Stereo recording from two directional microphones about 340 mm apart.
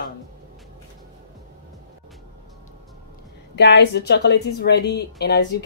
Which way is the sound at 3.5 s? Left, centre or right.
Left.